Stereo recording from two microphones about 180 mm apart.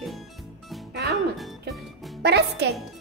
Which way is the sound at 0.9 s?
60° right (ahead or behind).